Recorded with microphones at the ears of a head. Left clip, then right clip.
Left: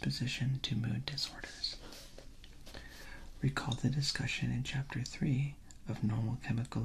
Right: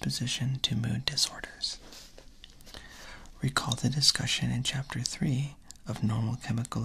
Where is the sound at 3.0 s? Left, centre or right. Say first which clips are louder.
Right 3 dB; right.